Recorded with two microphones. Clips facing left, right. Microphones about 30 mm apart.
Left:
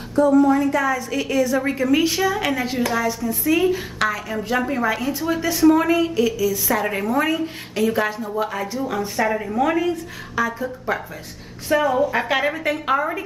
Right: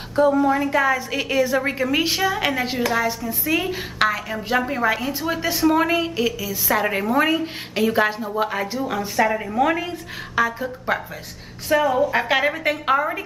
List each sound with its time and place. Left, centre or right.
0.1 s a woman's voice: right
0.4 s a woman's voice: centre
8.8 s a woman's voice: centre
11.7 s a woman's voice: centre